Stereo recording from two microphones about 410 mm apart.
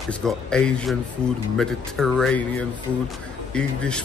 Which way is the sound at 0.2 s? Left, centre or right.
Centre.